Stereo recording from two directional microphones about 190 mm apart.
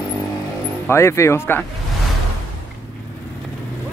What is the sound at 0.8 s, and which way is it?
Speech, 15° left (ahead or behind).